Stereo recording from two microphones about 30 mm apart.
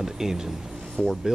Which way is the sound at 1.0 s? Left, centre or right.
Left.